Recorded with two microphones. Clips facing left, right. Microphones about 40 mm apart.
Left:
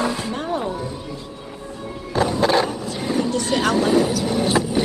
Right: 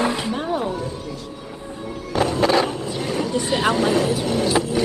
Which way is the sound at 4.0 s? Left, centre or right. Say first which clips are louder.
Left 1 dB; right.